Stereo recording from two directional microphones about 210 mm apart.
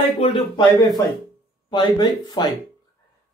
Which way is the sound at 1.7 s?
20° left (ahead or behind).